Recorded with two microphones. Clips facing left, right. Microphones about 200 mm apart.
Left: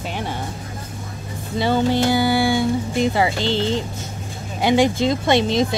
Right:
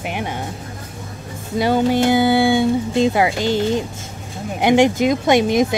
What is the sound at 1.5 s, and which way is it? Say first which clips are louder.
Speech: right 2 dB; 15° right (ahead or behind).